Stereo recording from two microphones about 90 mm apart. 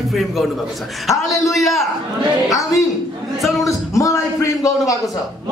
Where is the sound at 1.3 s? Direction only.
Centre (ahead or behind).